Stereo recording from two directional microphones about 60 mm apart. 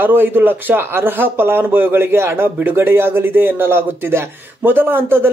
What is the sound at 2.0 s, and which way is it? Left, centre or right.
A man's voice, right.